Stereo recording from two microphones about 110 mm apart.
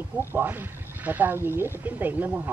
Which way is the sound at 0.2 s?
20° right (ahead or behind).